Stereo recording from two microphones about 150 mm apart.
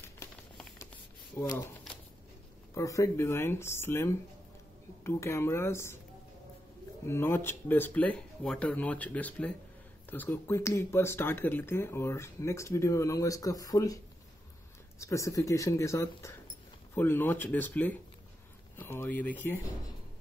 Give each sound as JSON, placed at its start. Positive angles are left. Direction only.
{"t": 1.4, "sound": "speech", "side_deg": 15}
{"t": 2.7, "sound": "speech", "side_deg": 20}
{"t": 7.1, "sound": "speech", "side_deg": 15}
{"t": 15.0, "sound": "speech", "side_deg": 20}